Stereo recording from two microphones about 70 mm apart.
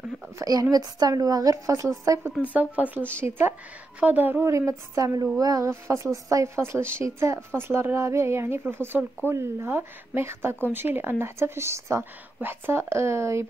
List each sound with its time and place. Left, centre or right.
0.4 s a woman's voice: right
2.4 s speech: right
3.2 s speech: right
4.5 s a woman's voice: right
5.6 s speech: right
12.4 s speech: right